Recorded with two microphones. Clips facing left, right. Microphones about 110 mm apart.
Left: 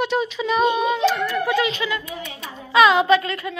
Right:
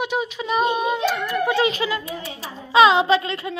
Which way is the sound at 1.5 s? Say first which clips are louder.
Right 1 dB; 35° right (ahead or behind).